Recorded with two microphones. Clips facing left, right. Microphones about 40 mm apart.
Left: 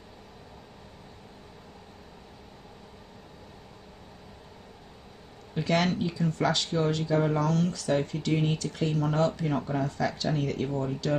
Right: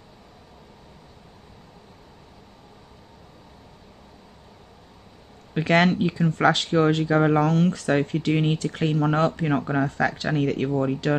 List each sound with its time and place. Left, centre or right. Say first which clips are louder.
5.5 s speech: right 7 dB; right